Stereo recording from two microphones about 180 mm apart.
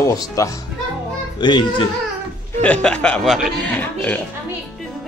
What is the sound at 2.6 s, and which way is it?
Speech, 5° left (ahead or behind).